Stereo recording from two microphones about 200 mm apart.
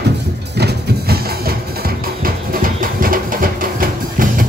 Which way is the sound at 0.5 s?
55° right (ahead or behind).